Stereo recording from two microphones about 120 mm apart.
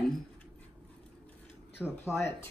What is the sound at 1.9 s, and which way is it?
Speech, 20° left (ahead or behind).